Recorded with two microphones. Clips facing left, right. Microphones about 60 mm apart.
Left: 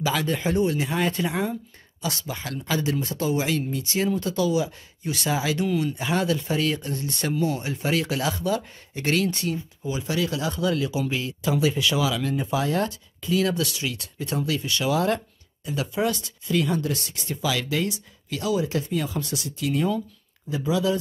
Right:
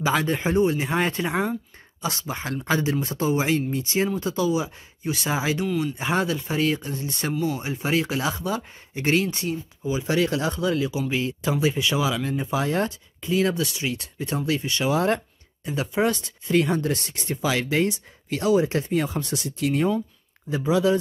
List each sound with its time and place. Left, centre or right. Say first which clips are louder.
0.0 s speech: right 2 dB; right
5.6 s speech: left 1 dB; centre
5.9 s speech: even; right; by 7.6 s centre
7.6 s speech: right 1 dB; centre
10.0 s speech: right 3 dB; right